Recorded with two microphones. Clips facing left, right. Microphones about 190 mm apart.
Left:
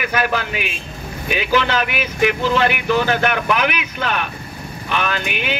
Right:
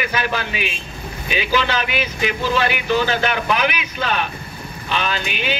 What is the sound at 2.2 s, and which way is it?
Speech, 55° left (ahead or behind).